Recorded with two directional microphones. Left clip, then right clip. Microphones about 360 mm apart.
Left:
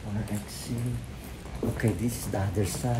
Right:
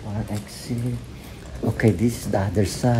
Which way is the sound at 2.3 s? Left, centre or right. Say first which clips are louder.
Right 7 dB; right.